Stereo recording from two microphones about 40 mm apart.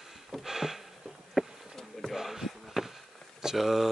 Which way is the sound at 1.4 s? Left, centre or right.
Centre.